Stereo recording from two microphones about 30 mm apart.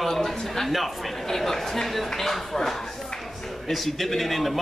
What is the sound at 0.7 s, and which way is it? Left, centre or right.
Speech, centre.